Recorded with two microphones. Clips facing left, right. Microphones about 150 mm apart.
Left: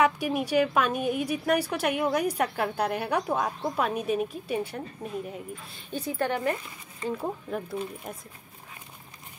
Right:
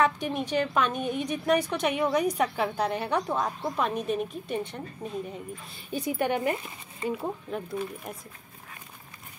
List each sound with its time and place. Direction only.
0.0 s a woman's voice: 10° left (ahead or behind)
5.9 s speech: 15° right (ahead or behind)
7.2 s speech: centre (ahead or behind)